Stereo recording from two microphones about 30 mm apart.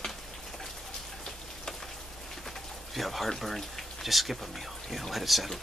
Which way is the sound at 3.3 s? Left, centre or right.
Centre.